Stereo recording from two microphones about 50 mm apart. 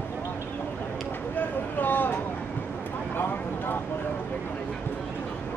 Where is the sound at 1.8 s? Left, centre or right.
Left.